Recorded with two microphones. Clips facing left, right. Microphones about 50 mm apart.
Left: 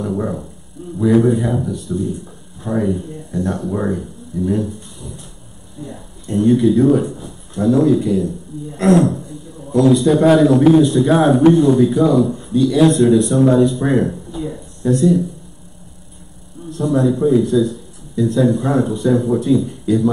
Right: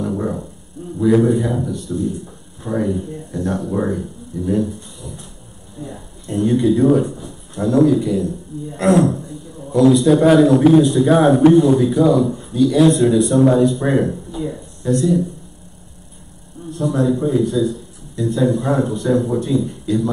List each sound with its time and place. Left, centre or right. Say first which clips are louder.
0.0 s dog: even; centre
1.3 s a man's voice: even; centre
4.4 s a sound: even; centre
5.8 s a man's voice: even; centre
9.1 s a sound: even; centre
9.9 s a man's voice: left 1 dB; centre
16.7 s a man's voice: left 2 dB; centre